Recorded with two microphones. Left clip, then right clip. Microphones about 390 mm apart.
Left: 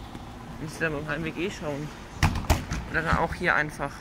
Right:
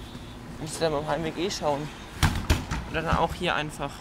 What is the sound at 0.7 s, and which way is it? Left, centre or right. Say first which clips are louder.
Speech: right 3 dB; centre.